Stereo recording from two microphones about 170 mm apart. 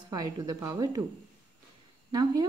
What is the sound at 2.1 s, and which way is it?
Speech, 25° right (ahead or behind).